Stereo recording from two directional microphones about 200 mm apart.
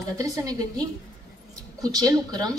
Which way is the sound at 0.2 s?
15° right (ahead or behind).